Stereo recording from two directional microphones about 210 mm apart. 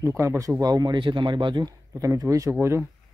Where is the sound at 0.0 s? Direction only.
10° right (ahead or behind).